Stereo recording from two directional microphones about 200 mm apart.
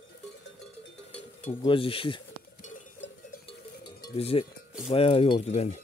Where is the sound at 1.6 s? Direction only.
25° left (ahead or behind).